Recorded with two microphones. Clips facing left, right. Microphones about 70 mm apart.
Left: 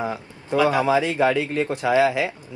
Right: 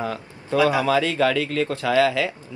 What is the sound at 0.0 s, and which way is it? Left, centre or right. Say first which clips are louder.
Speech: left 1 dB; centre.